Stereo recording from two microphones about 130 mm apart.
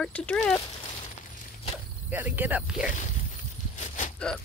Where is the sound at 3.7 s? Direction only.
75° left (ahead or behind).